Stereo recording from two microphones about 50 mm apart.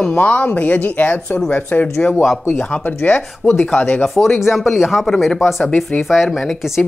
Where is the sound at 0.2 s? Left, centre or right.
Left.